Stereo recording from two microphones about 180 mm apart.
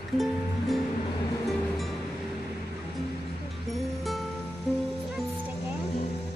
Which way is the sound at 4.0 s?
Centre (ahead or behind).